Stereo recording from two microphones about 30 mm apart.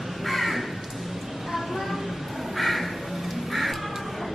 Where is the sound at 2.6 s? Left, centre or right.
Centre.